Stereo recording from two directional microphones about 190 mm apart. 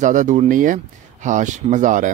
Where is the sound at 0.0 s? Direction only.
40° right (ahead or behind).